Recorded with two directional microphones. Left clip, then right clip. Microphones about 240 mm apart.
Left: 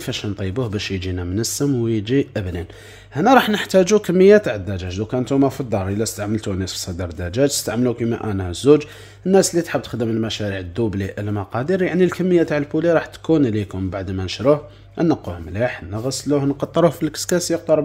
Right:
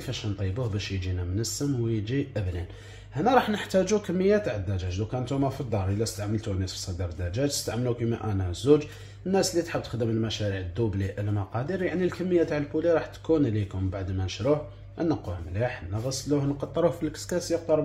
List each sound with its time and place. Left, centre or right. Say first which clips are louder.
0.0 s speech: left 9 dB; left